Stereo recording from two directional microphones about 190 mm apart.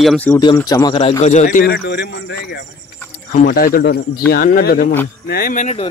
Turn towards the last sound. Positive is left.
turn(degrees=40)  # may be behind; listen again after turning